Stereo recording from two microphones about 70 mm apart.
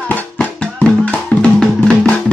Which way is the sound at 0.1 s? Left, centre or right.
Centre.